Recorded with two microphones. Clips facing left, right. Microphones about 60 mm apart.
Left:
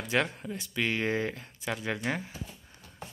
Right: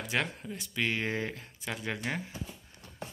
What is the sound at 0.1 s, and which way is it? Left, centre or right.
Speech, centre.